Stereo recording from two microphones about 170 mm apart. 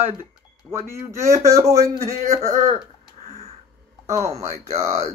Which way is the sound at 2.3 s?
40° right (ahead or behind).